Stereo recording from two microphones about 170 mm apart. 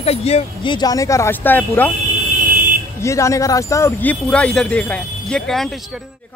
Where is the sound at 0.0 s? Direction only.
35° left (ahead or behind).